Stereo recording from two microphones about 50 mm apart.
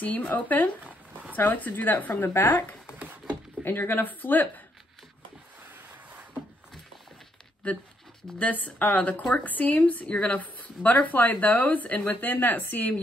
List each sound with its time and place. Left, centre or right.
0.0 s a woman's voice: left
3.6 s a woman's voice: left
7.6 s a woman's voice: left